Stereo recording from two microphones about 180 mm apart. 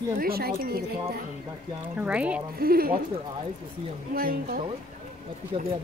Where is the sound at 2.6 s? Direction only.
55° right (ahead or behind).